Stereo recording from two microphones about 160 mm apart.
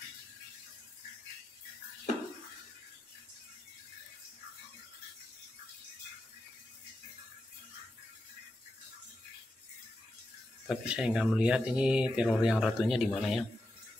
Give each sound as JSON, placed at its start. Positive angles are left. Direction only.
{"t": 10.7, "sound": "speech", "side_deg": -5}